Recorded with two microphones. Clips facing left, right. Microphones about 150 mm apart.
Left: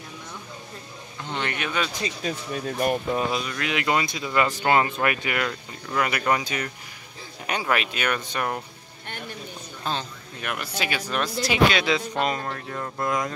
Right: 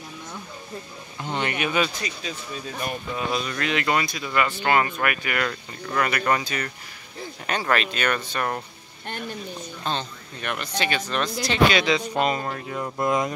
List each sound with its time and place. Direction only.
1.2 s speech: 15° right (ahead or behind)
2.2 s speech: 55° left (ahead or behind)
3.4 s speech: 10° left (ahead or behind)
9.8 s speech: 5° left (ahead or behind); by 13.3 s 20° right (ahead or behind)